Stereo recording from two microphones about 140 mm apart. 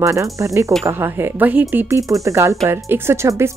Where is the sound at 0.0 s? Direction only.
20° right (ahead or behind).